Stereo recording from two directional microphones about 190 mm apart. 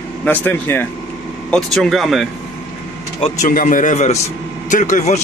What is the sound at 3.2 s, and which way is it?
Speech, 40° left (ahead or behind).